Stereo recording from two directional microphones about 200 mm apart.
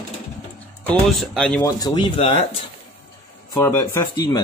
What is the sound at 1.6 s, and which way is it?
Speech, 20° left (ahead or behind).